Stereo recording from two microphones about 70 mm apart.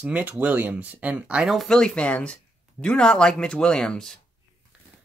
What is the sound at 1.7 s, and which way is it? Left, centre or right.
Speech, centre.